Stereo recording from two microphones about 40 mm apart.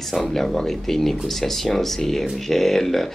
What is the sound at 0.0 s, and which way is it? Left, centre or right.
Speech, centre.